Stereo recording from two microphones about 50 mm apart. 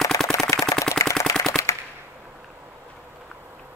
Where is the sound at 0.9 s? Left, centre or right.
Left.